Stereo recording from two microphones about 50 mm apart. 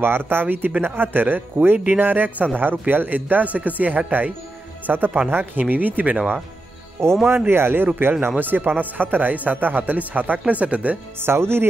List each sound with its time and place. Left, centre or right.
0.0 s speech: right
7.2 s speech: right
11.1 s speech: right